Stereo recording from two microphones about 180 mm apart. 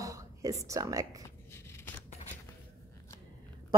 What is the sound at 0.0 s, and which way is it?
Speech, 20° right (ahead or behind).